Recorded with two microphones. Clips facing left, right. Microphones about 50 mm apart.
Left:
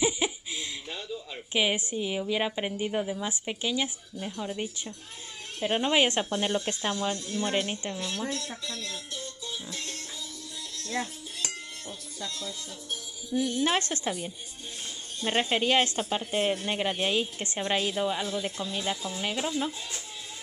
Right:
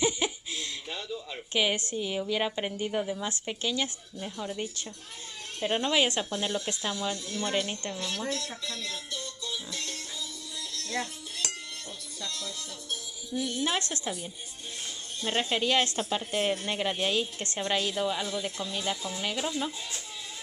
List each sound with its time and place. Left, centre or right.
0.0 s giggle: centre
1.5 s speech: centre
5.9 s speech: left
6.9 s speech: centre
9.1 s music: centre
12.2 s speech: centre
13.7 s a woman's voice: left
15.1 s speech: centre
16.3 s speech: centre